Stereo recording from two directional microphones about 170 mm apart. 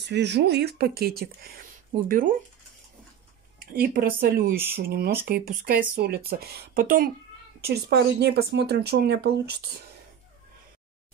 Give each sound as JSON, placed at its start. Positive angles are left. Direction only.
{"t": 0.0, "sound": "speech", "side_deg": -90}
{"t": 1.9, "sound": "speech", "side_deg": -50}
{"t": 3.7, "sound": "speech", "side_deg": -55}
{"t": 4.6, "sound": "speech", "side_deg": -15}
{"t": 4.8, "sound": "speech", "side_deg": -65}
{"t": 7.6, "sound": "speech", "side_deg": -70}